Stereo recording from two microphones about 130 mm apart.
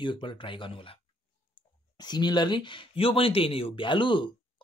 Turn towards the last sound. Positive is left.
turn(degrees=40)  # may be behind; listen again after turning